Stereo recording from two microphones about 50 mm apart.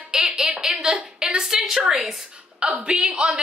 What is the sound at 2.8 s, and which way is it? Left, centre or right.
Speech, centre.